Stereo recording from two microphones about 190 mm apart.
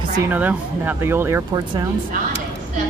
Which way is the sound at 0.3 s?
10° right (ahead or behind).